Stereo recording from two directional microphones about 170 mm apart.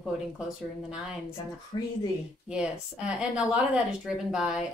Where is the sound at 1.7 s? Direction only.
30° left (ahead or behind).